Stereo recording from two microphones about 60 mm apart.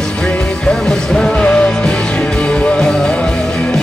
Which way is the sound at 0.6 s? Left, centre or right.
Centre.